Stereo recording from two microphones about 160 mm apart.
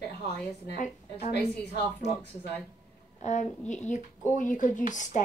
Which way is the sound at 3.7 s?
50° left (ahead or behind).